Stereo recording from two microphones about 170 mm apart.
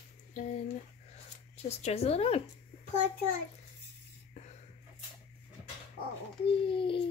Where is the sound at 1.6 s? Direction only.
35° left (ahead or behind).